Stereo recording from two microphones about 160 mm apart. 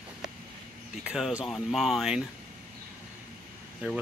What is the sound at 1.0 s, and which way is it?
Speech, 5° right (ahead or behind).